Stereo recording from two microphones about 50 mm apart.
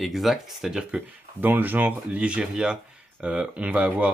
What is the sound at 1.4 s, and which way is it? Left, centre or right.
Speech, right.